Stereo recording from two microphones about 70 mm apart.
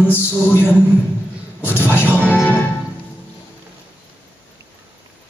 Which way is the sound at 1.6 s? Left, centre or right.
Right.